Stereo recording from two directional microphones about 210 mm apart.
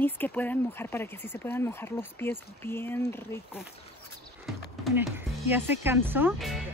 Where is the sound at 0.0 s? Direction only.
10° left (ahead or behind).